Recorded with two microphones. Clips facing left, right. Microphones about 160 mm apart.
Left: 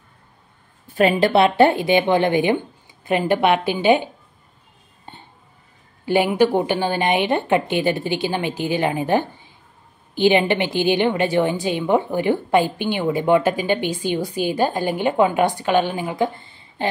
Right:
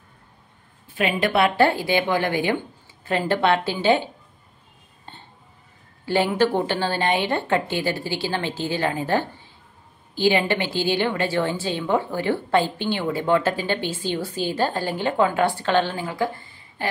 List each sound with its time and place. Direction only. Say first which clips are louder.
0.9 s a woman's voice: left 6 dB; 40° left (ahead or behind)
1.3 s a woman's voice: left 4 dB; 20° left (ahead or behind)
6.0 s a woman's voice: left 3 dB; 15° left (ahead or behind)